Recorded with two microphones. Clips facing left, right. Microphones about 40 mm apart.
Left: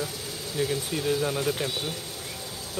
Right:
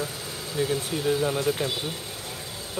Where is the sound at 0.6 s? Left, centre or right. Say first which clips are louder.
Right 2 dB; centre.